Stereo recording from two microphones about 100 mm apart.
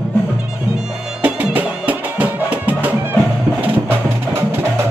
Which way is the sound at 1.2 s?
15° right (ahead or behind).